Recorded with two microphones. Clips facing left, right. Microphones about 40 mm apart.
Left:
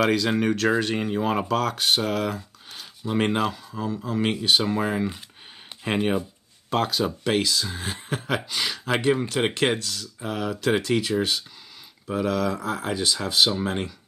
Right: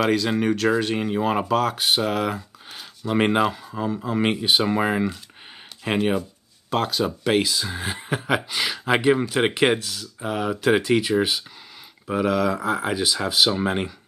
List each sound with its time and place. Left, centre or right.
0.0 s speech: centre; by 5.1 s right
5.9 s speech: centre
13.5 s speech: centre